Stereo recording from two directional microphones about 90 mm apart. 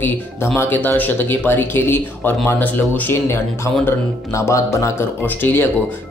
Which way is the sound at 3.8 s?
30° left (ahead or behind).